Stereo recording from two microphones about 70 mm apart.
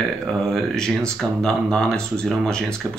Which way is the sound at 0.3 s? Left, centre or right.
Centre.